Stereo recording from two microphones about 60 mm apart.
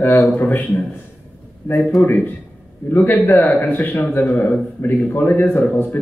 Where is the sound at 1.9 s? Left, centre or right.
Left.